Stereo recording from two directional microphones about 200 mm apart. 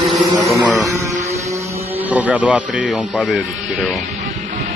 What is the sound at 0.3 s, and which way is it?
Speech, 15° right (ahead or behind).